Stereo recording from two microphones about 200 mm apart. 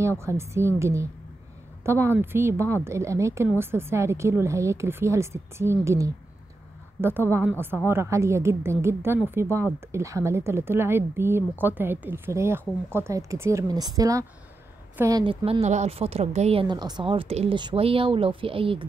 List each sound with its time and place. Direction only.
0.2 s a woman's voice: 15° right (ahead or behind)
2.0 s a woman's voice: 10° right (ahead or behind)